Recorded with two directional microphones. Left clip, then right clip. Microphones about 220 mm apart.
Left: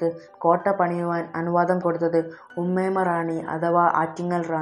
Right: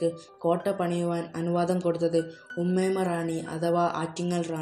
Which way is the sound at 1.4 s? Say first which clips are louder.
Left 5 dB; centre (ahead or behind).